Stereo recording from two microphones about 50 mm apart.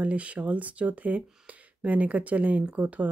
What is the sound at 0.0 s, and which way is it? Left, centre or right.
Speech, right.